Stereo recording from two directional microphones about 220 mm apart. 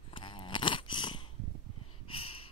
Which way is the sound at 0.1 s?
20° left (ahead or behind).